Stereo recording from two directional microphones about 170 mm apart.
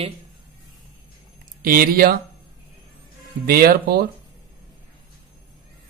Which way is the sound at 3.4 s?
60° right (ahead or behind).